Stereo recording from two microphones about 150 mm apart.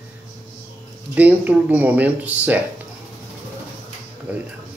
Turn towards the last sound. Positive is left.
turn(degrees=-10)  # may be behind; listen again after turning